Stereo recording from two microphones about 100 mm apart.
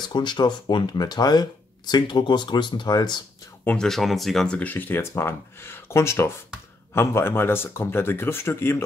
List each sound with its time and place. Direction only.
0.1 s speech: 50° left (ahead or behind)
3.6 s speech: 5° left (ahead or behind)
4.6 s speech: 20° left (ahead or behind)